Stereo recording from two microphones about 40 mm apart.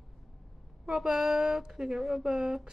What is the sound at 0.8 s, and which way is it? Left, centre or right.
Speech, centre.